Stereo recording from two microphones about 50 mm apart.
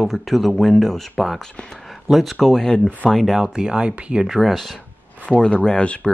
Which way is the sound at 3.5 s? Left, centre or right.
Centre.